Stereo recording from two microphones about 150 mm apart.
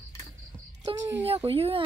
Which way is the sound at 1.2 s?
35° right (ahead or behind).